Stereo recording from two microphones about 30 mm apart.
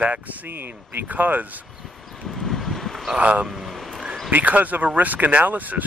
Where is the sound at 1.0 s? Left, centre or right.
Right.